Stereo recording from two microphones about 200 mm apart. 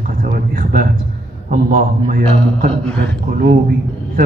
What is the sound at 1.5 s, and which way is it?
A man's voice, 40° right (ahead or behind).